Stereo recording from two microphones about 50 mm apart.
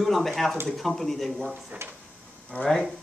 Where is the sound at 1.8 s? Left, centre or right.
Right.